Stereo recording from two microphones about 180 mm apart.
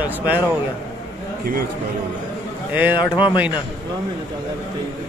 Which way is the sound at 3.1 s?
25° left (ahead or behind).